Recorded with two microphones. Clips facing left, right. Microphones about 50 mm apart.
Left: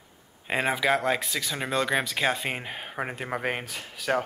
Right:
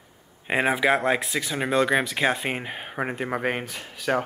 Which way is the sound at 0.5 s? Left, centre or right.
Centre.